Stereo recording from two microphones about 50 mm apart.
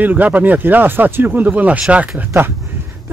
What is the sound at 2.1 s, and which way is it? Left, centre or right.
Speech, right.